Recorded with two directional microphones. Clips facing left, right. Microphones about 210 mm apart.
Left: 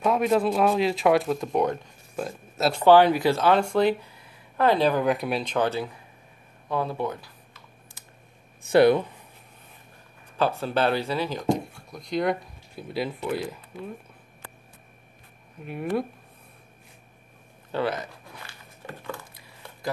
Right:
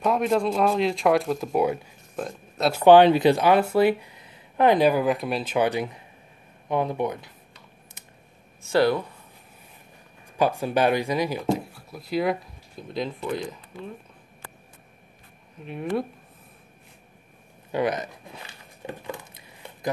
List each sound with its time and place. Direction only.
0.0 s speech: centre (ahead or behind)
2.8 s speech: 20° right (ahead or behind)
5.0 s speech: centre (ahead or behind); by 7.3 s 20° right (ahead or behind)
8.6 s speech: 20° left (ahead or behind)
10.3 s speech: 15° right (ahead or behind); by 13.9 s 5° left (ahead or behind)
15.6 s speech: 5° left (ahead or behind)
17.6 s a sound: 15° right (ahead or behind)